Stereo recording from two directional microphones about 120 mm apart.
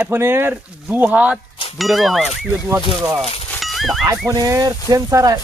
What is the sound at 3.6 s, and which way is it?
Dog, centre (ahead or behind).